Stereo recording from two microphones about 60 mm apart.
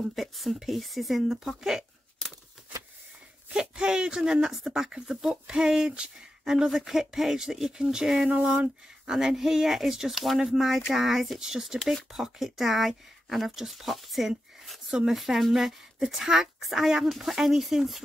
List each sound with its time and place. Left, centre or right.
0.0 s speech: centre
3.5 s speech: centre
8.3 s speech: right
9.0 s speech: centre